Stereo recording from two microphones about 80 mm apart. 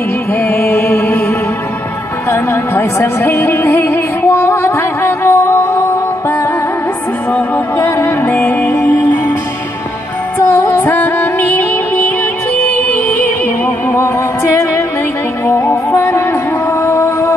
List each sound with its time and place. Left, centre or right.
0.3 s music: left
7.7 s music: left
8.4 s music: centre
10.4 s music: left
13.8 s music: left